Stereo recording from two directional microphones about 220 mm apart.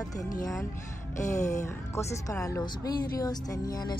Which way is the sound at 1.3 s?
15° left (ahead or behind).